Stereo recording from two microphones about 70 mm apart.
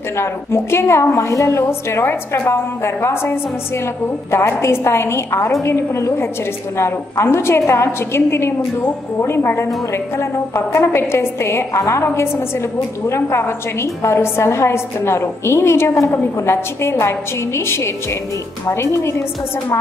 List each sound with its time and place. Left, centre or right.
0.2 s a woman's voice: left
18.7 s a woman's voice: left